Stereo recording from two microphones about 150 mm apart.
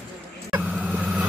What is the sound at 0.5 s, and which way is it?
Vehicle, 10° right (ahead or behind).